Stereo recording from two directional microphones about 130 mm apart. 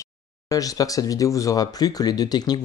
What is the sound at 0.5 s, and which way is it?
Speech, 25° left (ahead or behind).